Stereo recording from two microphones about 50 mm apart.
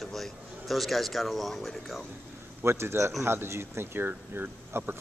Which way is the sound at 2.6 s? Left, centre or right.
Right.